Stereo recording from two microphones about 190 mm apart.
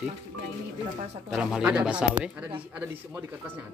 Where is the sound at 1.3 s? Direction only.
5° right (ahead or behind).